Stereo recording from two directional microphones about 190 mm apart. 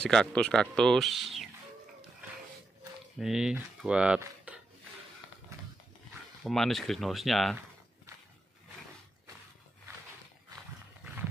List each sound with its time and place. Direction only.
0.0 s speech: 5° left (ahead or behind)
3.2 s speech: 5° right (ahead or behind)
6.4 s speech: centre (ahead or behind)